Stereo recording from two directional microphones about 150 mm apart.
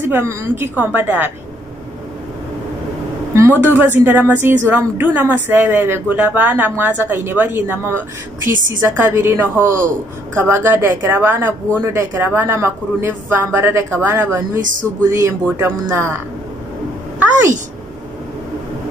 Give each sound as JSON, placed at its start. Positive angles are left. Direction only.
{"t": 0.0, "sound": "a woman's voice", "side_deg": -15}
{"t": 3.6, "sound": "a woman's voice", "side_deg": -15}